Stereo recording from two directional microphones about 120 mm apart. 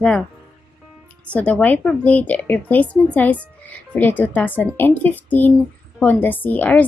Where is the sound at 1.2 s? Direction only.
10° left (ahead or behind).